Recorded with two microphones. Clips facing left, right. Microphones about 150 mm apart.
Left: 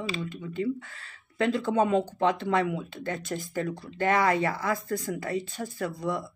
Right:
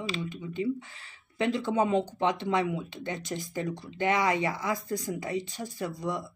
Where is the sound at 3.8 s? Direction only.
15° right (ahead or behind).